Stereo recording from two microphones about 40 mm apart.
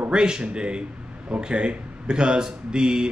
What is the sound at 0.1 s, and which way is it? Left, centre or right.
A man's voice, right.